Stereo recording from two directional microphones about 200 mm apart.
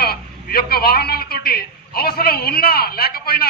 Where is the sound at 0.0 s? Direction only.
50° left (ahead or behind).